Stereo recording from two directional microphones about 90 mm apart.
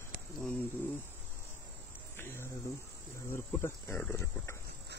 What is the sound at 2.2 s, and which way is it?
Speech, 30° left (ahead or behind).